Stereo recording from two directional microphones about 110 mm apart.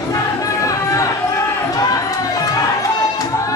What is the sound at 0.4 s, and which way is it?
Music, 30° left (ahead or behind).